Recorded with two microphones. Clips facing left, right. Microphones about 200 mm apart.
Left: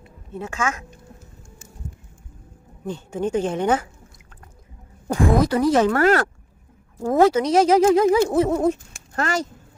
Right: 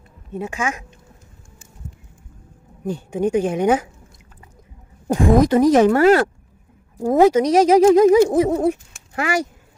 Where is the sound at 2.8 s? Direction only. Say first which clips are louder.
Right 4 dB; 15° right (ahead or behind).